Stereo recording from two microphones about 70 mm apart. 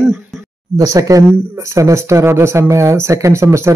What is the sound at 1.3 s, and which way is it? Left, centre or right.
Speech, right.